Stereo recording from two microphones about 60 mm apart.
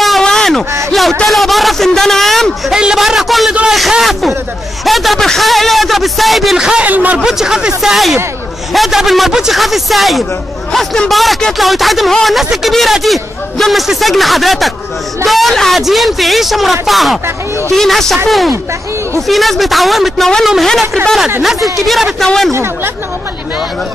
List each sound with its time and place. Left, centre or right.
0.2 s a sound: centre
0.8 s a man's voice: centre
2.7 s speech: centre
6.6 s speech: centre
6.9 s speech: right
7.2 s a man's voice: centre
19.2 s speech: centre